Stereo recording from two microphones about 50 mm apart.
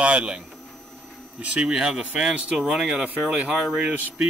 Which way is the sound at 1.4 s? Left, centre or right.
Right.